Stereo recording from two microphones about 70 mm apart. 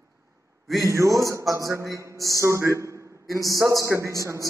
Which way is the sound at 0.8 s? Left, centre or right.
Right.